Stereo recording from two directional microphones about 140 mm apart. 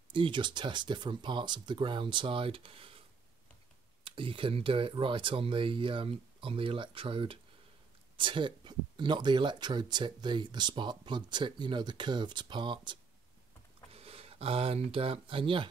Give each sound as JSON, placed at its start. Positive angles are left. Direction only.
{"t": 0.1, "sound": "speech", "side_deg": -35}
{"t": 4.0, "sound": "speech", "side_deg": -40}
{"t": 13.9, "sound": "speech", "side_deg": -45}